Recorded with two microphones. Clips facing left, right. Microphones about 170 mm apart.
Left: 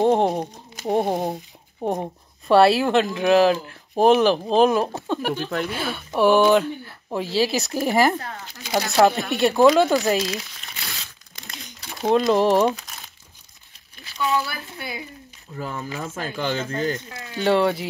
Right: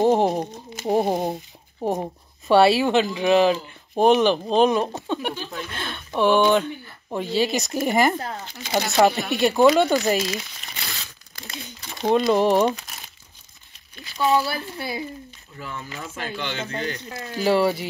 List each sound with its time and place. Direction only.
0.0 s speech: centre (ahead or behind)
5.3 s speech: 60° left (ahead or behind)
5.7 s speech: 5° left (ahead or behind)
14.4 s speech: 30° right (ahead or behind)
15.5 s speech: 40° left (ahead or behind)
17.1 s speech: 35° right (ahead or behind)
17.4 s speech: 5° right (ahead or behind)